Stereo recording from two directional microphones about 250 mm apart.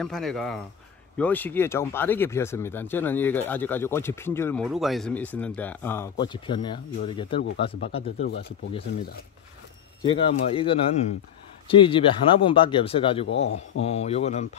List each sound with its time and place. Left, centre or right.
0.0 s speech: centre
4.6 s speech: centre; by 8.3 s left
10.0 s speech: left
13.3 s a man's voice: left
13.8 s speech: left